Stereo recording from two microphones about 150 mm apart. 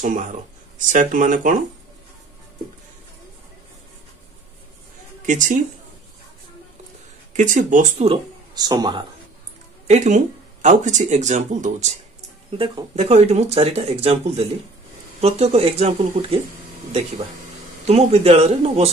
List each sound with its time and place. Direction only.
0.0 s speech: 60° right (ahead or behind)
5.2 s a woman's voice: 60° right (ahead or behind)
7.3 s speech: 55° right (ahead or behind)
8.5 s speech: 25° right (ahead or behind)
9.8 s speech: 55° right (ahead or behind)
12.4 s speech: 35° right (ahead or behind)
17.8 s speech: 45° right (ahead or behind)